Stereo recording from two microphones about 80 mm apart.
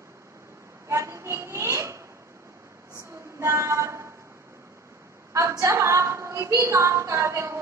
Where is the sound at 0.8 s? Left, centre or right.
Right.